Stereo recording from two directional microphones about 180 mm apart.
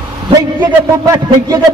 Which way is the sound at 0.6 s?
20° right (ahead or behind).